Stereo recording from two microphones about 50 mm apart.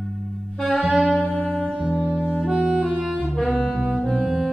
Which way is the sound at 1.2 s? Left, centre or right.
Centre.